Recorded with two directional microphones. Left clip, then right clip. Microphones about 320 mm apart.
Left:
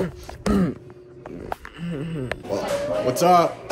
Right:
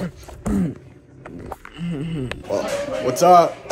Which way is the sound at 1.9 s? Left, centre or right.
Right.